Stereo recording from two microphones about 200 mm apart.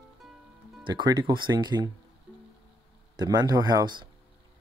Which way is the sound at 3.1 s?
20° right (ahead or behind).